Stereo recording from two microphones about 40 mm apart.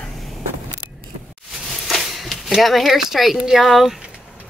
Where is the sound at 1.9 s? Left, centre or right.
Centre.